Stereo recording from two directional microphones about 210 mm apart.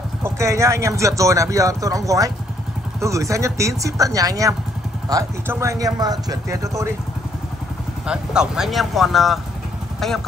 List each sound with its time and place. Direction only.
0.2 s speech: 15° right (ahead or behind)
8.1 s speech: 5° right (ahead or behind)